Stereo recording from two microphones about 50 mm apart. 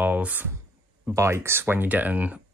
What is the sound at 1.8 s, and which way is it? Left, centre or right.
Speech, right.